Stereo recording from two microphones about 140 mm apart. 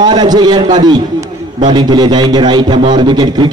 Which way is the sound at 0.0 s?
30° right (ahead or behind).